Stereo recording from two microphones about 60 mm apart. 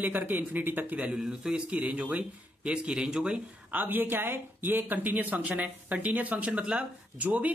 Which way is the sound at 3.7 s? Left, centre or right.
Right.